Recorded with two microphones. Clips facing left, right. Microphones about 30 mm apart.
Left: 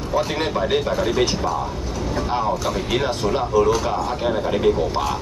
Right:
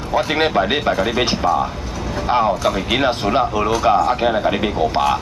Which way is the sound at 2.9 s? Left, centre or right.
Right.